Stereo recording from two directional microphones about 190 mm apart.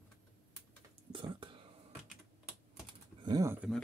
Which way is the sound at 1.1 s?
25° right (ahead or behind).